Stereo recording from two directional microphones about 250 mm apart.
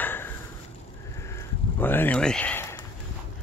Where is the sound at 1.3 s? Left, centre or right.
Centre.